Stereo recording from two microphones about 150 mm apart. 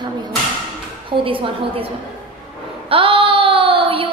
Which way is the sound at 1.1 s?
35° right (ahead or behind).